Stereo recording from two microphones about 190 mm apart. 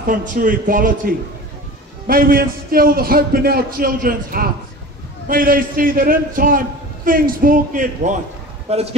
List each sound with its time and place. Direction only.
0.0 s a man's voice: 45° right (ahead or behind)
8.6 s speech: 35° right (ahead or behind)